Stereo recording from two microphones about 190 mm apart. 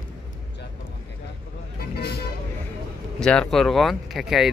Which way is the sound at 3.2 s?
5° left (ahead or behind).